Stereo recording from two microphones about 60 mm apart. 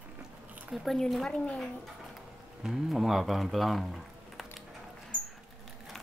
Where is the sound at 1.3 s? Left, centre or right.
Centre.